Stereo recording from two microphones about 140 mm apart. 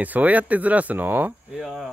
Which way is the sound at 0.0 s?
10° right (ahead or behind).